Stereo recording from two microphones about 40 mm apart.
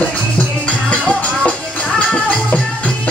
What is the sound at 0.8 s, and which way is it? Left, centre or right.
Music, left.